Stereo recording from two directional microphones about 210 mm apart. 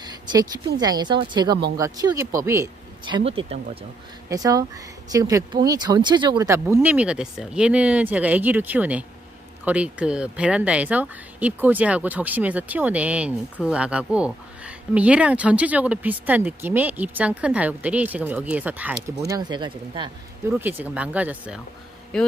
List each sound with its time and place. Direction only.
0.0 s a sound: 20° right (ahead or behind)
0.7 s speech: 20° right (ahead or behind)
3.3 s speech: 30° right (ahead or behind)
4.3 s speech: 15° right (ahead or behind)
19.2 s speech: 20° right (ahead or behind)
20.5 s speech: 10° right (ahead or behind)
22.1 s speech: 5° left (ahead or behind)